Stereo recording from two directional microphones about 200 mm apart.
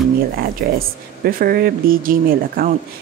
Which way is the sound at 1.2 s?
50° right (ahead or behind).